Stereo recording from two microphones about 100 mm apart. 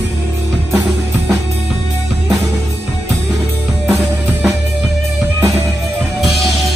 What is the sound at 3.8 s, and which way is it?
Music, 10° right (ahead or behind).